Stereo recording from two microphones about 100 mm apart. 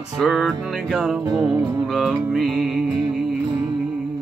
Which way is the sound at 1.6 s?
25° right (ahead or behind).